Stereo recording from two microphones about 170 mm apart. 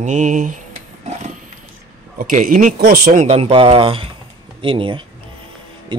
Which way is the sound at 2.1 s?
55° right (ahead or behind).